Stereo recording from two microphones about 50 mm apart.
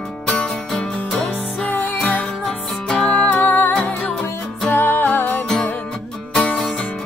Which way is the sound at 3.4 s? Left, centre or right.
Left.